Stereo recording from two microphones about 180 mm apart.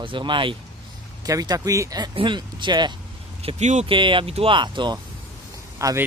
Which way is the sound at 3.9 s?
30° right (ahead or behind).